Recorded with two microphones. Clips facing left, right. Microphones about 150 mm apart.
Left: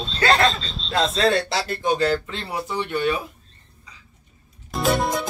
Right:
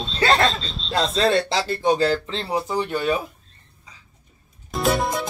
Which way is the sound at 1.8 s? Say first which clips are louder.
Right 1 dB; 30° right (ahead or behind).